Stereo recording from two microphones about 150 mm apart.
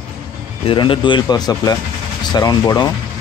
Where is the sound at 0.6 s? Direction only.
35° left (ahead or behind).